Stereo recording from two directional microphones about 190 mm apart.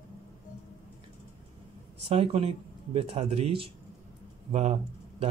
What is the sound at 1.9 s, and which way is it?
Speech, 35° right (ahead or behind).